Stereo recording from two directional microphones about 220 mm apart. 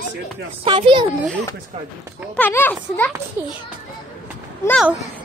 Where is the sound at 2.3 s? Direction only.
10° left (ahead or behind).